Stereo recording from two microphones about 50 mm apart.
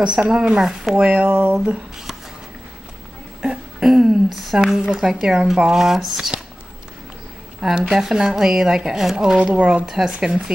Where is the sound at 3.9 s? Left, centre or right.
Centre.